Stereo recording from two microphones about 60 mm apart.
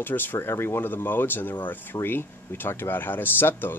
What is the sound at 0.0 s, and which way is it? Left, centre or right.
Speech, left.